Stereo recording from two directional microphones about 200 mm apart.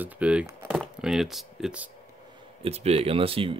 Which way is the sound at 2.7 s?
30° right (ahead or behind).